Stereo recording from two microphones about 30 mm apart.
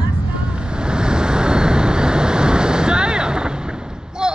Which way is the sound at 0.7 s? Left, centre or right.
Right.